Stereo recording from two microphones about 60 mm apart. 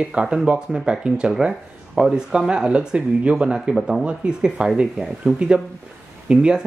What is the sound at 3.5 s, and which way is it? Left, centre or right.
Speech, centre.